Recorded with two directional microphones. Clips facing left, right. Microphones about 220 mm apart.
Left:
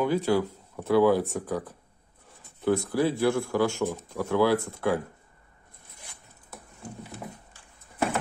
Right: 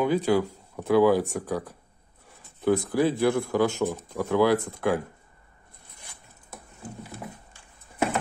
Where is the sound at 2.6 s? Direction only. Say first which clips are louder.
Right 2 dB; 15° right (ahead or behind).